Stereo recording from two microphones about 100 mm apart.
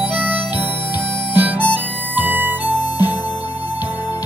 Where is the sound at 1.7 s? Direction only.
20° right (ahead or behind).